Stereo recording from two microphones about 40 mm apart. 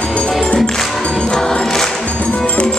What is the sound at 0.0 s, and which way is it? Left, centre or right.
Music, left.